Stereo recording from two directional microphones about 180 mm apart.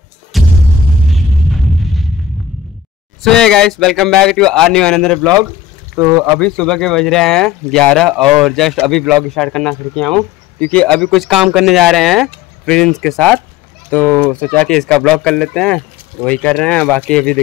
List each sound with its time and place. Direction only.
0.3 s music: centre (ahead or behind)
3.3 s speech: 5° left (ahead or behind)
5.9 s speech: 15° right (ahead or behind)
6.4 s speech: 5° left (ahead or behind)